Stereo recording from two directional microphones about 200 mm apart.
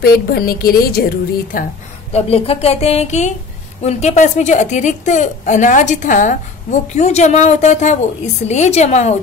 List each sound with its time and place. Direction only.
0.0 s a woman's voice: 50° left (ahead or behind)
2.1 s a woman's voice: 30° left (ahead or behind)